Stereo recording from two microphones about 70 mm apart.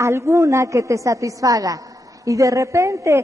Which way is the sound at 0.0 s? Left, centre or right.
Right.